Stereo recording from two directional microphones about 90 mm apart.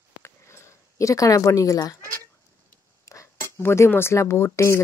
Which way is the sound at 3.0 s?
30° left (ahead or behind).